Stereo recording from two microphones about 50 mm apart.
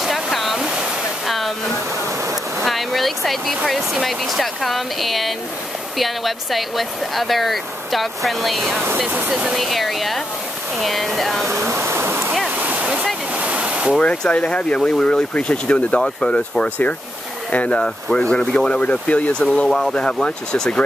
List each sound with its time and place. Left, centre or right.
0.0 s waterfall: centre
0.6 s waterfall: centre
1.2 s a sound: centre
2.6 s a sound: centre
4.0 s speech: centre
11.4 s speech: right
12.4 s waterfall: right
13.9 s speech: centre
16.6 s speech: left
17.7 s speech: centre
19.4 s speech: centre